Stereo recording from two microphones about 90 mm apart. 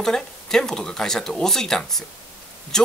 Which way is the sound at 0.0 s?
5° left (ahead or behind).